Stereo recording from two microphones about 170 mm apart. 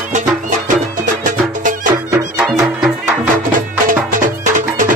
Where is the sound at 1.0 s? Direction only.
50° right (ahead or behind).